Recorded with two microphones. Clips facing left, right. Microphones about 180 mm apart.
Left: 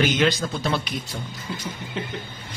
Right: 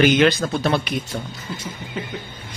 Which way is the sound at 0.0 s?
60° right (ahead or behind).